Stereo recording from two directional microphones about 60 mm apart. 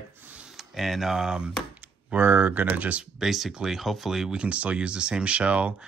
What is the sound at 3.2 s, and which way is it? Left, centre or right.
Speech, centre.